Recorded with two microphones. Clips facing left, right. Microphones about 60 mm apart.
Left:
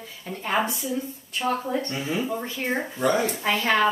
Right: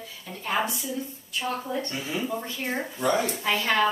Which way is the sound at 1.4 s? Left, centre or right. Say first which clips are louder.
Left 4 dB; left.